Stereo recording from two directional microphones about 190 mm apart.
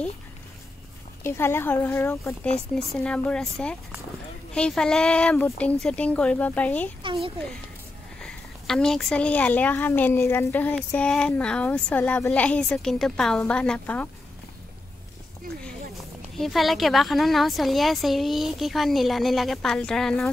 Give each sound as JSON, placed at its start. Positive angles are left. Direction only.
{"t": 1.2, "sound": "a woman's voice", "side_deg": 15}
{"t": 7.0, "sound": "a child's voice", "side_deg": -25}
{"t": 8.2, "sound": "speech", "side_deg": 5}
{"t": 16.3, "sound": "a woman's voice", "side_deg": 0}